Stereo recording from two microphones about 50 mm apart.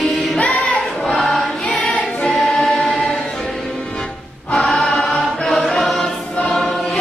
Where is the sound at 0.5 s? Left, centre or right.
Centre.